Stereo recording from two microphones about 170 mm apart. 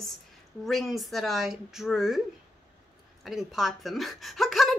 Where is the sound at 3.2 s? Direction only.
Centre (ahead or behind).